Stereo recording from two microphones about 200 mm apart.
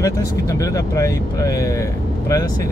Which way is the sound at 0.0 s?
15° left (ahead or behind).